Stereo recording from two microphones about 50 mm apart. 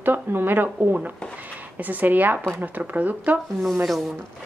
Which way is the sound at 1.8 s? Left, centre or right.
Right.